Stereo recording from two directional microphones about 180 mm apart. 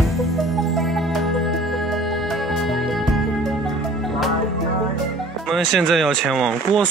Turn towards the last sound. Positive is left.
turn(degrees=0)  # may be behind; listen again after turning